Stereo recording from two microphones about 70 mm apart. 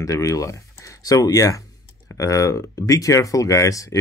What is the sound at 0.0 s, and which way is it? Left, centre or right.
Speech, left.